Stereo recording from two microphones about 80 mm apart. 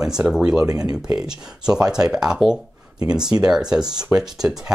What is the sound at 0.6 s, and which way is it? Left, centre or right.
Speech, right.